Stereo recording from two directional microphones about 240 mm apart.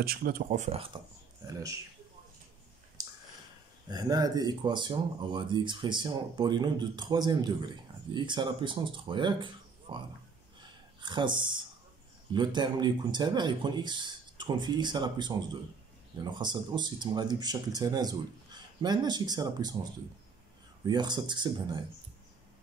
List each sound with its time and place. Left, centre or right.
0.0 s speech: right
1.5 s speech: centre
3.9 s speech: centre
10.6 s a sound: centre
12.3 s speech: centre